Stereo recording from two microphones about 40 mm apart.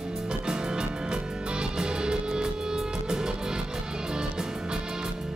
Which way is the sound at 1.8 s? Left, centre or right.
Centre.